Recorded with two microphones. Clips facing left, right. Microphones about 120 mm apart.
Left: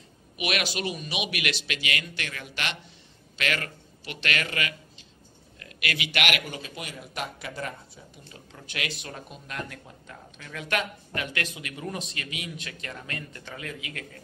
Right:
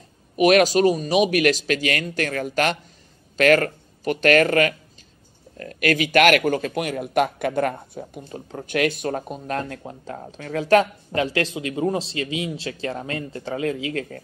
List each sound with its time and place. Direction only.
0.4 s a man's voice: 40° right (ahead or behind)